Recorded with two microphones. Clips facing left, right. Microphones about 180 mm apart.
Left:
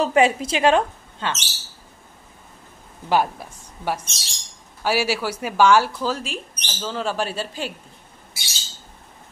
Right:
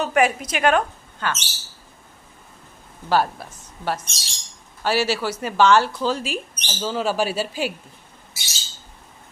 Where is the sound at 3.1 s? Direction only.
15° left (ahead or behind); by 7.7 s 5° right (ahead or behind).